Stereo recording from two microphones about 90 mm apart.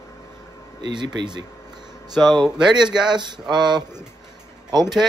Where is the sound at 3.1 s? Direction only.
55° right (ahead or behind).